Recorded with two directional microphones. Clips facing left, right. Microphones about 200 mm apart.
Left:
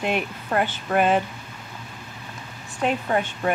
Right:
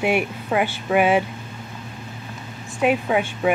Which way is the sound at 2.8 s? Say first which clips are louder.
Right 4 dB; 10° right (ahead or behind).